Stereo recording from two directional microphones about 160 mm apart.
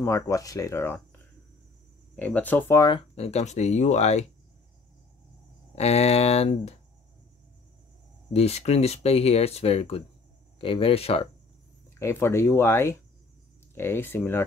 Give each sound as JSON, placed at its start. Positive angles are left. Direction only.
{"t": 0.0, "sound": "speech", "side_deg": 20}
{"t": 2.8, "sound": "speech", "side_deg": 30}
{"t": 5.8, "sound": "speech", "side_deg": 40}
{"t": 8.3, "sound": "speech", "side_deg": 40}
{"t": 11.9, "sound": "speech", "side_deg": 15}